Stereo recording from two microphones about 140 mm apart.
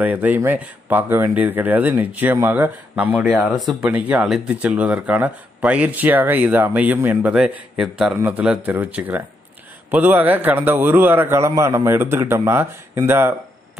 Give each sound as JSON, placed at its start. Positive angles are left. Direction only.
{"t": 0.0, "sound": "speech", "side_deg": -10}